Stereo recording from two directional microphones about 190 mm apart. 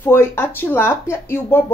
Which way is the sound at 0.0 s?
10° left (ahead or behind).